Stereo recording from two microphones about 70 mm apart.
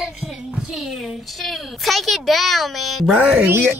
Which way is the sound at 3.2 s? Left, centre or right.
Centre.